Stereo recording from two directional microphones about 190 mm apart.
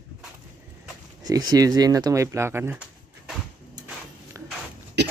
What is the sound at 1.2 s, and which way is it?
Speech, 20° right (ahead or behind).